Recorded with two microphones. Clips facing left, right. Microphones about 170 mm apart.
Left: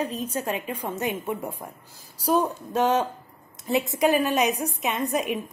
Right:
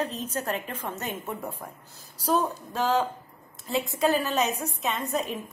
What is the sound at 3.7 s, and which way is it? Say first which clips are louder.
A woman's voice: left 3 dB; 20° left (ahead or behind).